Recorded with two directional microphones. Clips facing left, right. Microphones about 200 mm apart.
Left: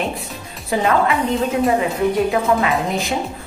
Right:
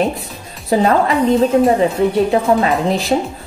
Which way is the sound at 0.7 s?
35° right (ahead or behind).